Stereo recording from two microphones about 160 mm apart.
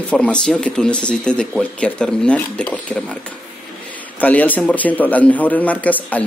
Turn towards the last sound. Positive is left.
turn(degrees=10)  # may be behind; listen again after turning